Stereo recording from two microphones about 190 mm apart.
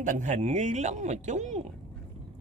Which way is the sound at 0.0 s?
40° right (ahead or behind).